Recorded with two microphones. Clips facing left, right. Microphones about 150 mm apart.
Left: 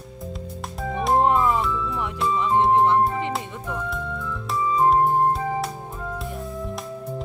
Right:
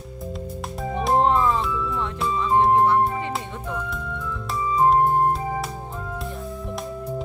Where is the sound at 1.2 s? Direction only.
15° left (ahead or behind).